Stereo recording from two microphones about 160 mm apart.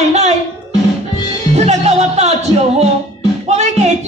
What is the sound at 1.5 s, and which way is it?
Speech, 45° right (ahead or behind).